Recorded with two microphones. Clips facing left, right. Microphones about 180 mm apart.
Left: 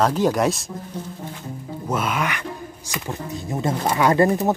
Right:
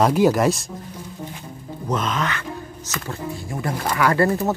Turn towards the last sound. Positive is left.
turn(degrees=20)  # may be behind; listen again after turning